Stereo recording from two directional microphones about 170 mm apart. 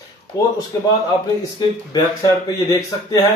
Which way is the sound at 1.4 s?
25° left (ahead or behind).